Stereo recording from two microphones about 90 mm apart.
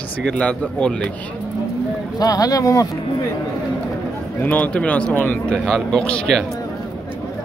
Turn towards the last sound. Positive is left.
turn(degrees=5)  # may be behind; listen again after turning